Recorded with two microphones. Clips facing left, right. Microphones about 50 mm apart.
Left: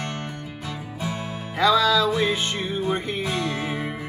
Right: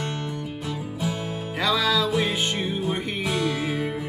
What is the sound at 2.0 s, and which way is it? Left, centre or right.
Music, left.